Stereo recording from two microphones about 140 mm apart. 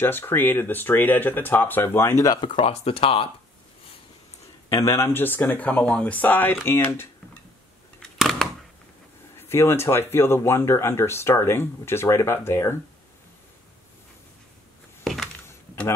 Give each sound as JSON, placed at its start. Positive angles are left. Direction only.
{"t": 0.0, "sound": "speech", "side_deg": 15}
{"t": 2.5, "sound": "speech", "side_deg": 45}
{"t": 4.9, "sound": "speech", "side_deg": 15}
{"t": 8.0, "sound": "a sound", "side_deg": 0}
{"t": 9.4, "sound": "speech", "side_deg": 15}
{"t": 15.4, "sound": "computer keyboard", "side_deg": 20}